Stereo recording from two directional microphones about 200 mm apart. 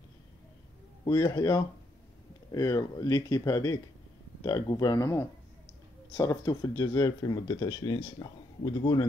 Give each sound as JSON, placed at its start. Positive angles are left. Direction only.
{"t": 1.0, "sound": "speech", "side_deg": 20}